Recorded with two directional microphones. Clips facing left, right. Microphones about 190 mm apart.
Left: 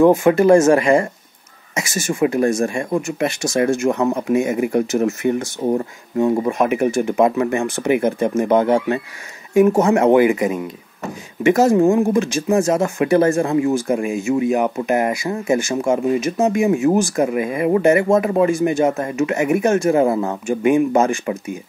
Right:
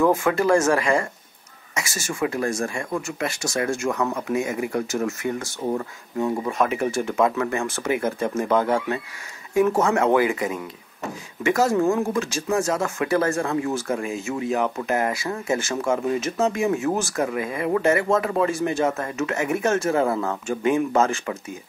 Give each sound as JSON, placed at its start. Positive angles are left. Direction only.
{"t": 0.0, "sound": "speech", "side_deg": 20}